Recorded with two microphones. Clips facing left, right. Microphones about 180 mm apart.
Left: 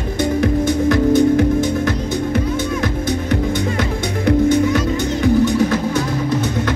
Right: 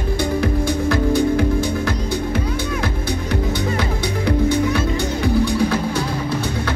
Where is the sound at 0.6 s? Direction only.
20° left (ahead or behind).